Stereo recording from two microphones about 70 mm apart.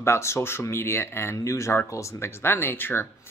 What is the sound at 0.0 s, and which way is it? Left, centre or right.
Speech, left.